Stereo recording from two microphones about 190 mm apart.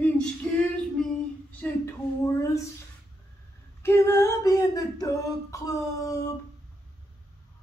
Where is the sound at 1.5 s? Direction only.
10° left (ahead or behind).